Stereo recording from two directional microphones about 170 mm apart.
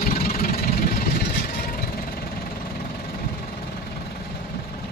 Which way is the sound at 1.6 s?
60° left (ahead or behind).